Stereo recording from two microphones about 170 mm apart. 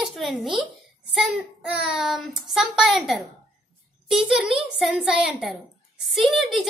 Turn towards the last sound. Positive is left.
turn(degrees=0)  # may be behind; listen again after turning